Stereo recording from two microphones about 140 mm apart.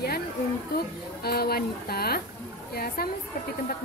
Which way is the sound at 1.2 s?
90° left.